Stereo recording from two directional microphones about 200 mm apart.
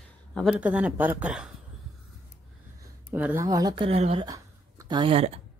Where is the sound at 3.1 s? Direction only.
10° right (ahead or behind).